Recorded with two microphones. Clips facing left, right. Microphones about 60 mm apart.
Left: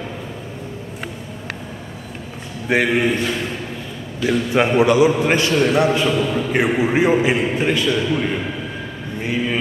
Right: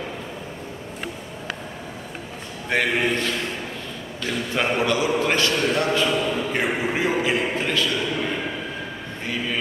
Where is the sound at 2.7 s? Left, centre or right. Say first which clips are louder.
Left 5 dB; centre.